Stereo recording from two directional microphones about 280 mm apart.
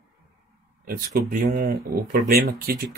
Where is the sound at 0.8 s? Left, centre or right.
Right.